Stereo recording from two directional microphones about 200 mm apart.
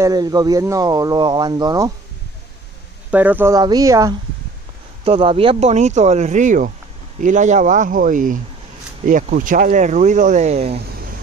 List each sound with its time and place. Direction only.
0.0 s speech: 20° right (ahead or behind)
3.1 s speech: 10° right (ahead or behind); by 10.8 s 30° right (ahead or behind)